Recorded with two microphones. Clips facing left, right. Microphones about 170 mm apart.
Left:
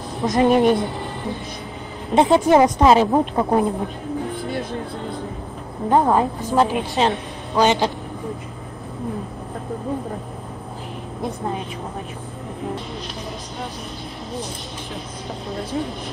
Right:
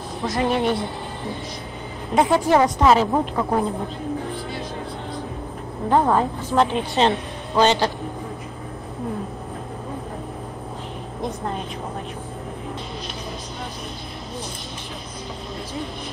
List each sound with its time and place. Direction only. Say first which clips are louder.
0.2 s a woman's voice: left 6 dB; 20° left (ahead or behind)
2.1 s a woman's voice: left 3 dB; 20° left (ahead or behind)
5.9 s a woman's voice: left 2 dB; 15° left (ahead or behind)